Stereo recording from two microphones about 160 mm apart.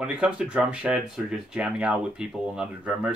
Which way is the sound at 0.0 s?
5° right (ahead or behind).